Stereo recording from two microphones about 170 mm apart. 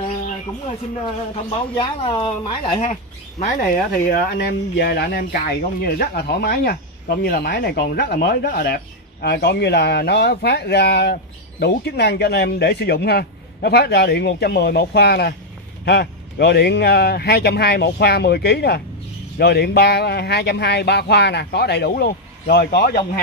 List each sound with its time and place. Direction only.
1.3 s speech: 30° left (ahead or behind)
4.1 s speech: 70° left (ahead or behind)